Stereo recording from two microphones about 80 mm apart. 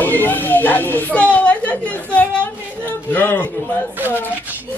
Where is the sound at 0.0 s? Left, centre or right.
Left.